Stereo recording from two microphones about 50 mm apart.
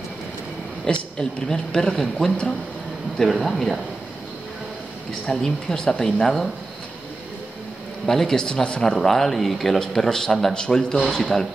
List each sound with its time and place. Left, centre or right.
0.9 s a man's voice: centre
5.4 s a man's voice: centre
8.0 s a man's voice: centre
8.8 s a man's voice: centre